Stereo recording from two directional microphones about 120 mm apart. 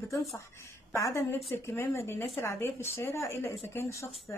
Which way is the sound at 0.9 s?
25° left (ahead or behind).